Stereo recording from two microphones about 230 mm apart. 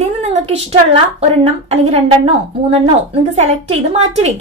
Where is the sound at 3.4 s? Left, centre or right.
Right.